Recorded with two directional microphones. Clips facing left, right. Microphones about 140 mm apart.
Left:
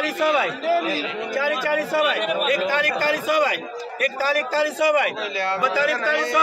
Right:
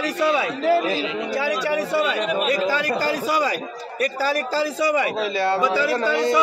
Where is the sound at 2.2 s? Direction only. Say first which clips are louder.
Even; 35° right (ahead or behind).